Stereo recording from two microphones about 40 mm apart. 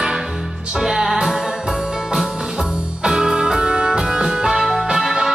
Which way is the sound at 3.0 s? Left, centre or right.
Centre.